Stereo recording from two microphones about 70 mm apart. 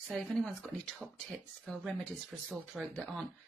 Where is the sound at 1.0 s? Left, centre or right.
Centre.